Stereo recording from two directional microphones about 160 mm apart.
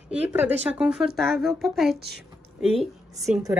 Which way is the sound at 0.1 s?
10° right (ahead or behind).